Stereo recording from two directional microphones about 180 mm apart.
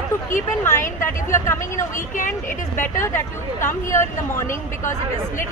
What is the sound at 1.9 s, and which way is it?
Speech, 45° left (ahead or behind).